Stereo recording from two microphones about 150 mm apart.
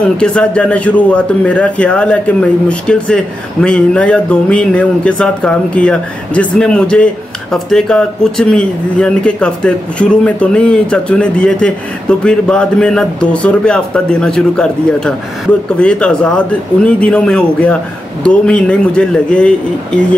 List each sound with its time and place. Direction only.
0.2 s a man's voice: 5° left (ahead or behind)